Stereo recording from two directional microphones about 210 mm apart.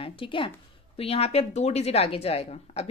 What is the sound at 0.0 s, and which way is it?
A woman's voice, 25° left (ahead or behind).